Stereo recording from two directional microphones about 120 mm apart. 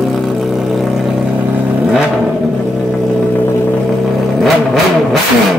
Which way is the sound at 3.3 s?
15° left (ahead or behind).